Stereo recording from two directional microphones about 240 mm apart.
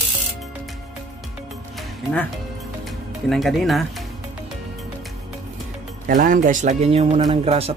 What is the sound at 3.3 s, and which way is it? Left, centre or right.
Speech, centre.